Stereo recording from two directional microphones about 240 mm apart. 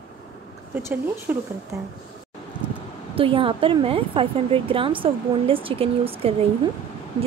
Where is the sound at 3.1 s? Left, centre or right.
Right.